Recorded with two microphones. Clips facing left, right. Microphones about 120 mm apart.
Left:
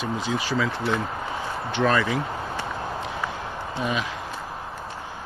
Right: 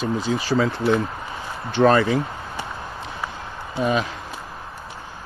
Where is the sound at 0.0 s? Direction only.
35° right (ahead or behind).